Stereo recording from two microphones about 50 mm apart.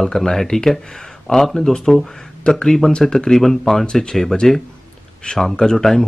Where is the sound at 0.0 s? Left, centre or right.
Centre.